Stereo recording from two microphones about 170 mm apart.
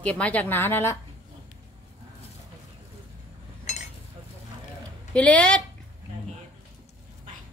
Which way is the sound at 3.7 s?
45° left (ahead or behind).